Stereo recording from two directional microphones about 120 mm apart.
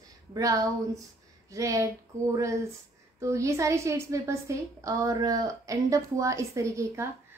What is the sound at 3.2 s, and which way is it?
A woman's voice, 25° right (ahead or behind).